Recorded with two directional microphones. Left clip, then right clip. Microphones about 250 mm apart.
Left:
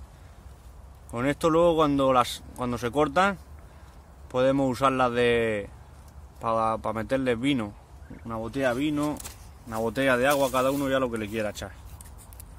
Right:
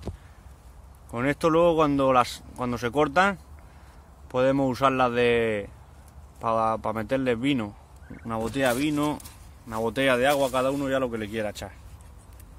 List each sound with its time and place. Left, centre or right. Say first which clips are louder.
1.1 s speech: right 1 dB; centre
8.3 s speech: right 2 dB; centre